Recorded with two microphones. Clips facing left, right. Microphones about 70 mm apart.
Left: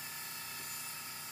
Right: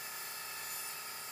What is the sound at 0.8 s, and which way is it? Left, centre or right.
Sawing, centre.